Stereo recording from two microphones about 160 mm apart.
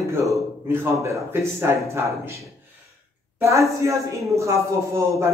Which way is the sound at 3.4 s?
20° right (ahead or behind).